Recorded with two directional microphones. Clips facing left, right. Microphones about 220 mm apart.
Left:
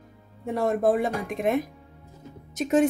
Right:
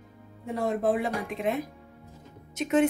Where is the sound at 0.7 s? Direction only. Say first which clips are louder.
Left 3 dB; 45° left (ahead or behind).